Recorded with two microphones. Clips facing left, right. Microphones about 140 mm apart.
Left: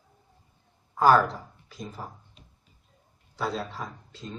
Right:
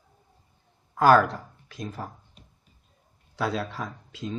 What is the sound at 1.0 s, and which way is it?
Speech, 85° right.